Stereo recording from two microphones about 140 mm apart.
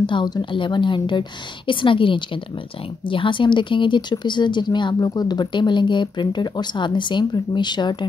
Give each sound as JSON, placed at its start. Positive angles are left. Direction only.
{"t": 0.0, "sound": "speech", "side_deg": 35}